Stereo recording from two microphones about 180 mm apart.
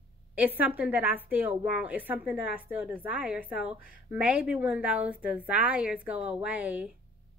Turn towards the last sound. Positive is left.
turn(degrees=-10)  # may be behind; listen again after turning